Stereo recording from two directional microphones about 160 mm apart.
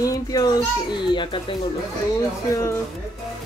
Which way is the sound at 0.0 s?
20° left (ahead or behind).